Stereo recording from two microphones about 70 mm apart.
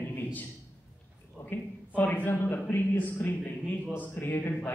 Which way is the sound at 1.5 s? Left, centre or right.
Left.